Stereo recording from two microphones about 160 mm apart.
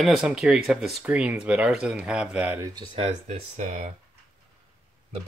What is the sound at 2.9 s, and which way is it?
Speech, 40° right (ahead or behind).